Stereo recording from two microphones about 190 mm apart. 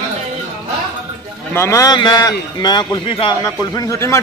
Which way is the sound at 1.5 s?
15° left (ahead or behind).